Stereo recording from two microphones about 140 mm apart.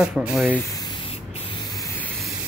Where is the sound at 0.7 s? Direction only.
30° left (ahead or behind).